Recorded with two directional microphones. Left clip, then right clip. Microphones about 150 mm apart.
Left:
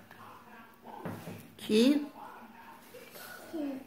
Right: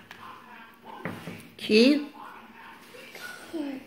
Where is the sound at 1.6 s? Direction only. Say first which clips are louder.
Right 6 dB; 15° right (ahead or behind).